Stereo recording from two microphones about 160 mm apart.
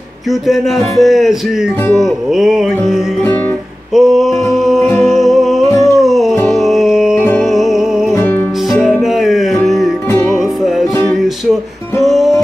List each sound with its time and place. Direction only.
0.3 s music: centre (ahead or behind)
5.7 s a sound: 20° left (ahead or behind)
5.9 s music: centre (ahead or behind)
8.1 s music: 15° left (ahead or behind)
8.6 s music: centre (ahead or behind)
10.0 s music: 15° left (ahead or behind)
10.4 s music: centre (ahead or behind)
12.0 s music: centre (ahead or behind)